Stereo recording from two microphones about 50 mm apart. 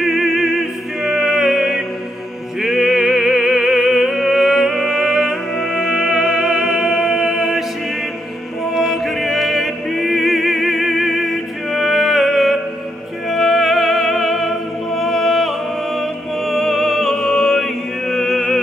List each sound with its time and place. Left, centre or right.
0.0 s music: centre
8.7 s music: centre